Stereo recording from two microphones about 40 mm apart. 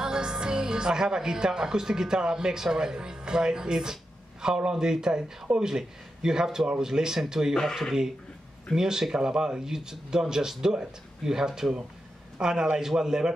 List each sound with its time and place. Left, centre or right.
0.0 s speech: centre
8.7 s speech: centre